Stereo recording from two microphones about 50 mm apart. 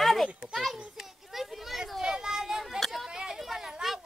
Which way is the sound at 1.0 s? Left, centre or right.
Centre.